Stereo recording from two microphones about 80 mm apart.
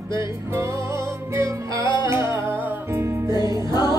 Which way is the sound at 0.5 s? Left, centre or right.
Right.